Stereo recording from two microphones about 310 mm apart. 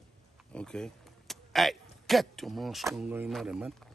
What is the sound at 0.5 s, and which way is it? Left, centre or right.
Speech, centre.